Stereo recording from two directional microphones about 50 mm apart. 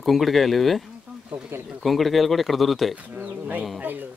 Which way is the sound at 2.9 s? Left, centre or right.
Right.